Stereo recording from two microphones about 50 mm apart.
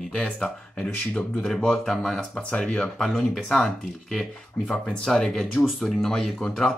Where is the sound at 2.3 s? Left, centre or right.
Left.